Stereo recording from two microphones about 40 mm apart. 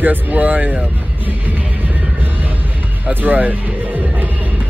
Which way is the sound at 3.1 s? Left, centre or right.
Right.